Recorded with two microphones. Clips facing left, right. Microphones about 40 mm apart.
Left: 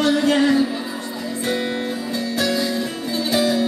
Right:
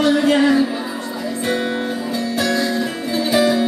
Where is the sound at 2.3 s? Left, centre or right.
Centre.